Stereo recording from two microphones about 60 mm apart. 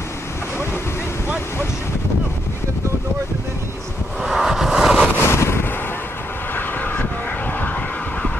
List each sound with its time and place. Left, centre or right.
4.2 s vehicle: centre
5.1 s wind noise: left
6.5 s vehicle: left